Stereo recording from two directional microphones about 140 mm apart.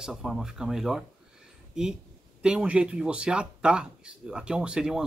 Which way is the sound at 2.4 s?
5° right (ahead or behind).